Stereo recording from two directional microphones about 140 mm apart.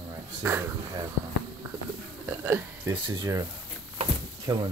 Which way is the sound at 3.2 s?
25° right (ahead or behind).